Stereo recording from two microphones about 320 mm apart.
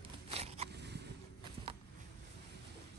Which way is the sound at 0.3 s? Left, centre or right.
Centre.